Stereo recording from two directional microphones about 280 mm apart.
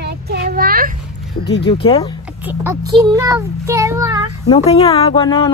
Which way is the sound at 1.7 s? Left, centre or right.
Centre.